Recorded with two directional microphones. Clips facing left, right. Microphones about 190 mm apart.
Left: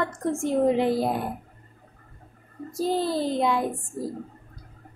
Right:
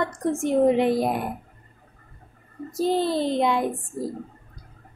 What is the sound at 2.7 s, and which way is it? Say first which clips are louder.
Speech: right 2 dB; 20° right (ahead or behind).